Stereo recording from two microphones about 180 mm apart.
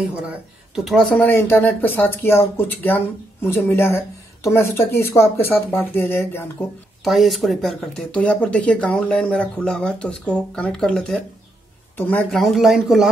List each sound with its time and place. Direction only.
0.1 s speech: 5° right (ahead or behind); by 6.4 s 10° left (ahead or behind)
7.1 s speech: centre (ahead or behind)